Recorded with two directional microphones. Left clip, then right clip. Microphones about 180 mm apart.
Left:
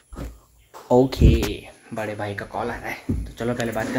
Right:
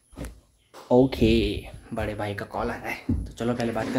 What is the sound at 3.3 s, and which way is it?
Speech, 5° right (ahead or behind).